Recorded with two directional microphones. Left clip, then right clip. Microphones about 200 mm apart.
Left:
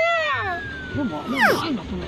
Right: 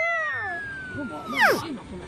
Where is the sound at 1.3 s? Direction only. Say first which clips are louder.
Left 1 dB; centre (ahead or behind).